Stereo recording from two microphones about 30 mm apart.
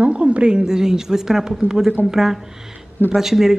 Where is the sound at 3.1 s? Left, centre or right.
Centre.